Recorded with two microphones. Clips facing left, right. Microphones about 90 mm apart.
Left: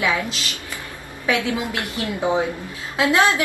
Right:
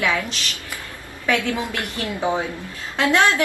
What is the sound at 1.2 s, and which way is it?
A woman's voice, 15° left (ahead or behind).